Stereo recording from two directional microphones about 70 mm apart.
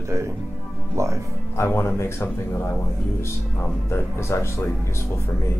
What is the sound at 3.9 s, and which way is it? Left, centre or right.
Speech, left.